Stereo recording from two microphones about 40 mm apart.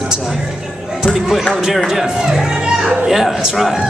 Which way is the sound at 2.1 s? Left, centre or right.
Right.